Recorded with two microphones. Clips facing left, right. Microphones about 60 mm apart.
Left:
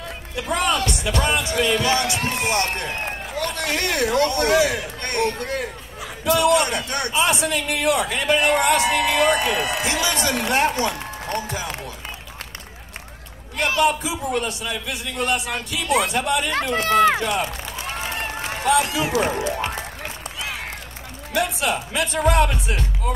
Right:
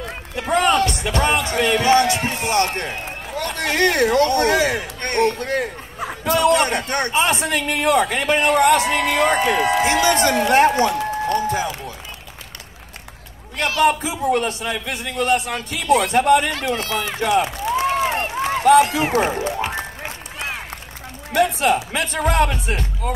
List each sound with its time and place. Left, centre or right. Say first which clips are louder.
0.4 s a man's voice: right 5 dB; right
13.7 s a man's voice: right 4 dB; right
16.7 s speech: left 7 dB; left
17.7 s run: right 10 dB; right
21.3 s speech: right 5 dB; right